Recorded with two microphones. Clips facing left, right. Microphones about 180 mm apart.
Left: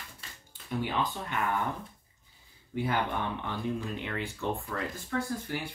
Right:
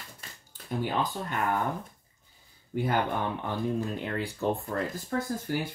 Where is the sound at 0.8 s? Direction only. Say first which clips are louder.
Right 2 dB; 40° right (ahead or behind).